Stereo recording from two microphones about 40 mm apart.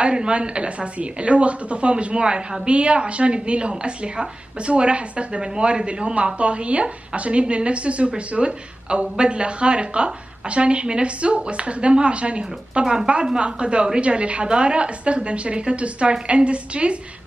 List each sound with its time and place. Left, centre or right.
0.0 s speech: right
12.8 s speech: centre